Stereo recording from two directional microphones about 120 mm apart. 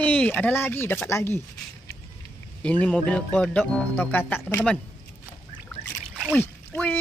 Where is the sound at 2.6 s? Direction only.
10° left (ahead or behind).